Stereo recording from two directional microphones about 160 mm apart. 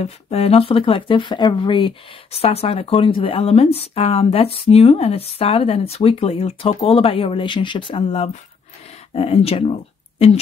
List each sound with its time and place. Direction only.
0.0 s speech: 40° left (ahead or behind)